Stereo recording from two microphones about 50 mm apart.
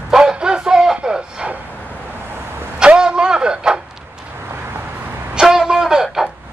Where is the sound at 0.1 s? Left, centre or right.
Centre.